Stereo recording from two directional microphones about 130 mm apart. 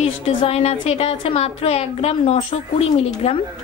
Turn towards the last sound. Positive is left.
turn(degrees=50)  # may be behind; listen again after turning